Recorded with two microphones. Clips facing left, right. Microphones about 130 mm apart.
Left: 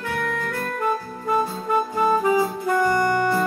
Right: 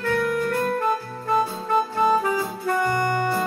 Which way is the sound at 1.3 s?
5° left (ahead or behind).